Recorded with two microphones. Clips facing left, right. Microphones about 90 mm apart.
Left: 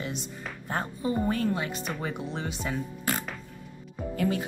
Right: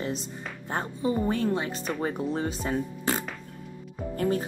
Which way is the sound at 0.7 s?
25° right (ahead or behind).